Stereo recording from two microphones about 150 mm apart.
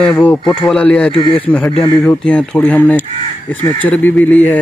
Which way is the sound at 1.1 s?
35° left (ahead or behind).